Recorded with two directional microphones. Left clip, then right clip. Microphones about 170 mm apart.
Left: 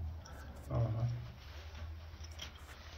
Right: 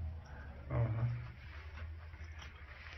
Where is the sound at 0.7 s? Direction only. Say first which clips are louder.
Left 1 dB; 10° left (ahead or behind).